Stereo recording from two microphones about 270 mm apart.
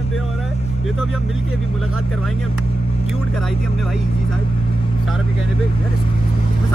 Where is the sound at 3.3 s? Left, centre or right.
Centre.